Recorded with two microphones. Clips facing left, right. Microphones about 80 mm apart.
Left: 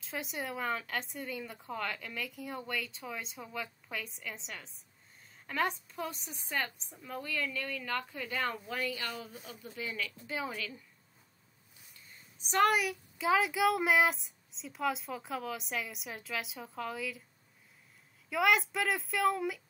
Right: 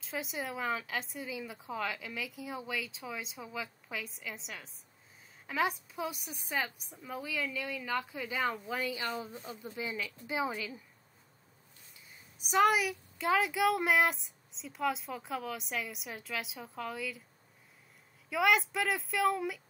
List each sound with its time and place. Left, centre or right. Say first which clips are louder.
0.0 s a child's voice: right 1 dB; centre
12.1 s a child's voice: right 2 dB; centre
18.3 s a child's voice: even; centre